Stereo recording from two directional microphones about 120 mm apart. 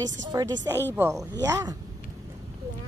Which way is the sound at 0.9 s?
20° right (ahead or behind).